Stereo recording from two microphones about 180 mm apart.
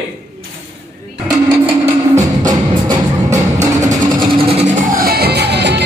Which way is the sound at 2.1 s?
20° right (ahead or behind).